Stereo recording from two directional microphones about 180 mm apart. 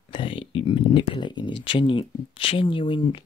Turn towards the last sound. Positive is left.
turn(degrees=30)  # may be behind; listen again after turning